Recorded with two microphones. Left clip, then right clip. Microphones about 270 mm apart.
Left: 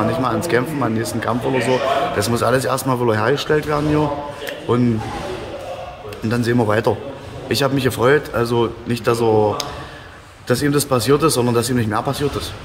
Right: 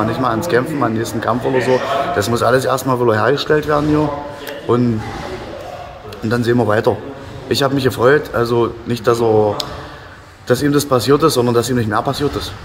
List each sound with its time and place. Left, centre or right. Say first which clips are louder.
0.2 s a man's voice: right 3 dB; centre
6.2 s a man's voice: right 3 dB; centre